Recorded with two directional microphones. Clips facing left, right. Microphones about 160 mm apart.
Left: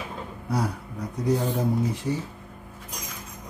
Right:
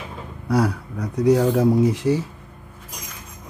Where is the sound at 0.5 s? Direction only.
80° right.